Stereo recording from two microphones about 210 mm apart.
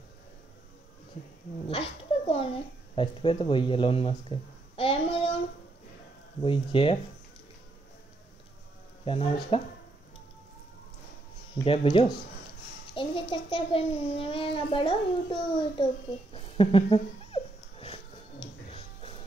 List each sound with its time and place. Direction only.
1.7 s speech: 25° left (ahead or behind)
6.4 s a child's voice: 25° left (ahead or behind)
9.0 s a child's voice: 25° left (ahead or behind)
11.6 s a child's voice: 25° left (ahead or behind)
16.3 s dog: 25° left (ahead or behind)